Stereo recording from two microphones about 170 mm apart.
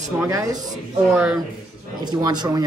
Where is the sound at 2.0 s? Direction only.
25° right (ahead or behind).